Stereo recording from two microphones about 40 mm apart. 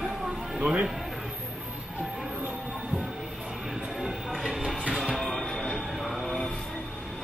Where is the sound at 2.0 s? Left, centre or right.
Centre.